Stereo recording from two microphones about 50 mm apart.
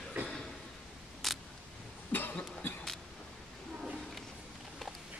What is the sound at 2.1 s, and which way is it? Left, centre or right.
Cough, left.